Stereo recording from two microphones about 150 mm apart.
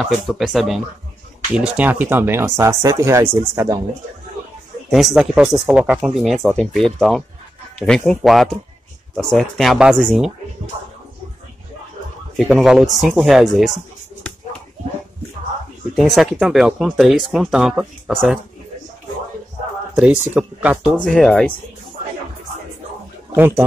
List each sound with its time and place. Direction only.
0.0 s speech: centre (ahead or behind); by 3.8 s 20° right (ahead or behind)
4.8 s speech: centre (ahead or behind)
12.4 s speech: centre (ahead or behind)
15.9 s speech: centre (ahead or behind)
20.0 s speech: 10° right (ahead or behind)
21.0 s speech: 5° left (ahead or behind)
23.3 s speech: 15° right (ahead or behind)